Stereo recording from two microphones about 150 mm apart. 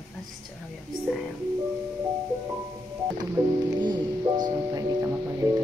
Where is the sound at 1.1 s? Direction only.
Centre (ahead or behind).